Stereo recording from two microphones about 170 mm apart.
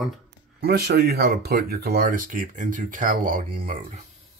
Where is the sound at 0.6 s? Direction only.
70° right (ahead or behind); by 3.8 s 55° right (ahead or behind).